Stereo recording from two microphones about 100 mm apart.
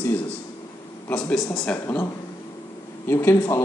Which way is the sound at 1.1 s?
5° left (ahead or behind).